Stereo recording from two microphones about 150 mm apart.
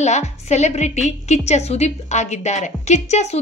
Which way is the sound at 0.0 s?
50° left (ahead or behind).